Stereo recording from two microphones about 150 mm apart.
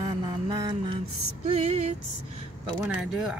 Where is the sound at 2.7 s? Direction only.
5° right (ahead or behind).